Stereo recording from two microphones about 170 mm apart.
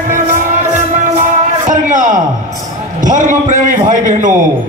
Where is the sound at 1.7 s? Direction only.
50° right (ahead or behind).